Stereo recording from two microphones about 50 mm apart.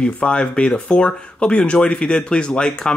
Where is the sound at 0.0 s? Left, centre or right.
Left.